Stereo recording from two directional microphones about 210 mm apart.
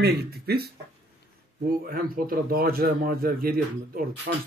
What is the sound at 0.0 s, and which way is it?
Speech, 50° right (ahead or behind).